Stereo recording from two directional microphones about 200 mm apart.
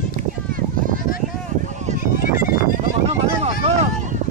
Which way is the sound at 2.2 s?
45° left (ahead or behind).